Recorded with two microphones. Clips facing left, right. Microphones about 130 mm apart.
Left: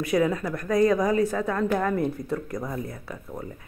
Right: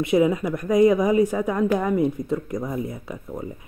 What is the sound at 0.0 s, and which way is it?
Speech, 20° right (ahead or behind).